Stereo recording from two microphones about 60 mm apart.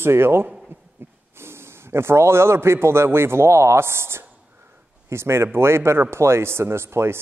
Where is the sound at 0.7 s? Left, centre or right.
Right.